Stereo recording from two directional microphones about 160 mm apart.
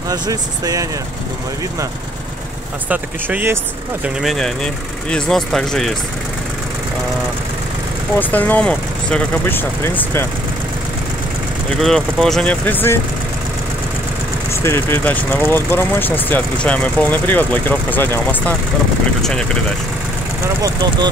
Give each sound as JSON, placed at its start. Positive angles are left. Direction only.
{"t": 0.1, "sound": "speech", "side_deg": -20}
{"t": 2.9, "sound": "speech", "side_deg": -10}
{"t": 4.0, "sound": "speech", "side_deg": 0}
{"t": 8.2, "sound": "speech", "side_deg": 10}
{"t": 11.7, "sound": "speech", "side_deg": 5}
{"t": 14.5, "sound": "speech", "side_deg": 15}
{"t": 20.6, "sound": "speech", "side_deg": -25}